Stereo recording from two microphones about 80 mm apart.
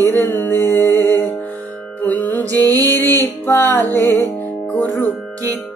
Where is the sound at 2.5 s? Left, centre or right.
Right.